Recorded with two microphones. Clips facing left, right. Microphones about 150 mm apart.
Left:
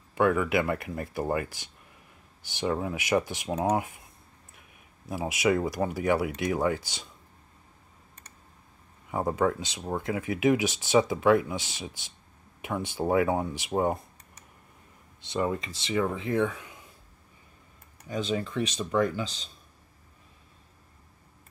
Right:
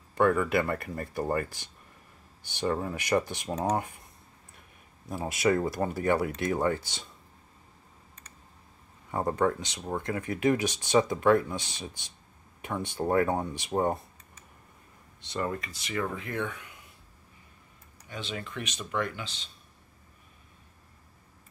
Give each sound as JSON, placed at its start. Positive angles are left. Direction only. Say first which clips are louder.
{"t": 0.1, "sound": "speech", "louder": "even", "side_deg": 5}
{"t": 9.1, "sound": "speech", "louder": "left 1 dB", "side_deg": 5}
{"t": 15.2, "sound": "speech", "louder": "left 4 dB", "side_deg": 10}
{"t": 18.0, "sound": "speech", "louder": "left 8 dB", "side_deg": 40}